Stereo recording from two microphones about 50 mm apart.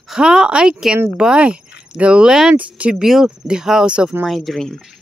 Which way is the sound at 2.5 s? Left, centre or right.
Right.